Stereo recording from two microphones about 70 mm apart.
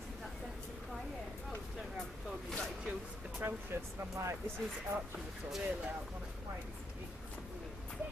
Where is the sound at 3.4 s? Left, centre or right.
Right.